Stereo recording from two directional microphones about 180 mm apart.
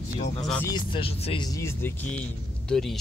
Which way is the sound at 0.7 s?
30° left (ahead or behind).